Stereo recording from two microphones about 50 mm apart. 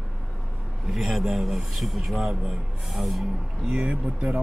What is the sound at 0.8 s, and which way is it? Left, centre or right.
Speech, centre.